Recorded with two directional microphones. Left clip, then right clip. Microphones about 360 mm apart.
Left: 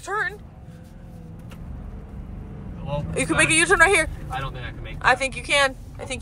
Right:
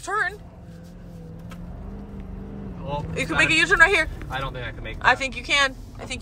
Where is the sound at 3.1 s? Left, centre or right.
Centre.